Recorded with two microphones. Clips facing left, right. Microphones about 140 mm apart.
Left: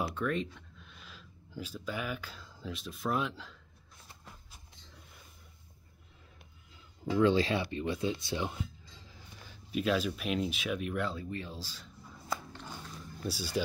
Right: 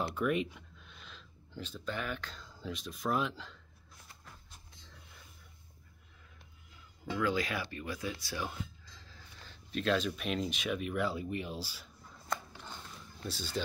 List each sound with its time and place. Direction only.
0.0 s speech: 10° right (ahead or behind)
7.2 s speech: 30° left (ahead or behind); by 11.1 s centre (ahead or behind)
11.1 s speech: 15° right (ahead or behind)
12.3 s a sound: 5° left (ahead or behind)
13.2 s speech: 10° left (ahead or behind)